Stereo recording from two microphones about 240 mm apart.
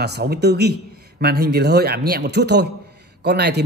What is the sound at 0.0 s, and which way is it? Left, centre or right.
Speech, right.